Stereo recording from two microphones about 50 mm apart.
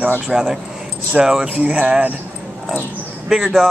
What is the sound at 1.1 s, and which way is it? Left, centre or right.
Speech, centre.